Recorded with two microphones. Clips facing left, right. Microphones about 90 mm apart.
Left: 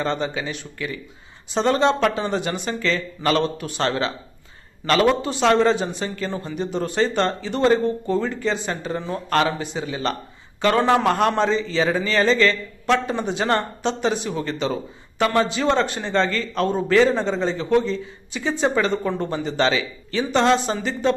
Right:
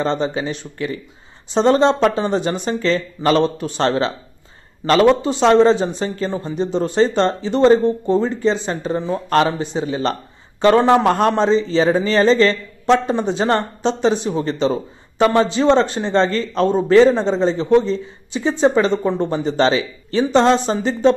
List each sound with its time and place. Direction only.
0.0 s a man's voice: 30° right (ahead or behind)